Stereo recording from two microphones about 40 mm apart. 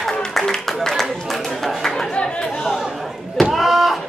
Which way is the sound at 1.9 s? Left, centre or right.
Centre.